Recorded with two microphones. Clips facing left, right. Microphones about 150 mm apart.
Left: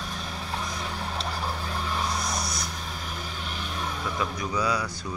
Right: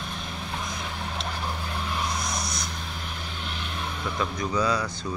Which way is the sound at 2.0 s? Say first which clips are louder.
Left 1 dB; 35° left (ahead or behind).